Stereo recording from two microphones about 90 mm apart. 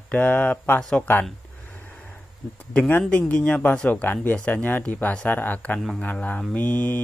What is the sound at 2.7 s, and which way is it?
Speech, 15° left (ahead or behind).